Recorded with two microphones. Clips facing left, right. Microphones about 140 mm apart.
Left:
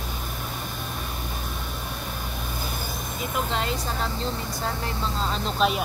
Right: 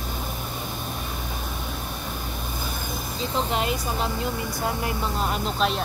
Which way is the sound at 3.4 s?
15° right (ahead or behind).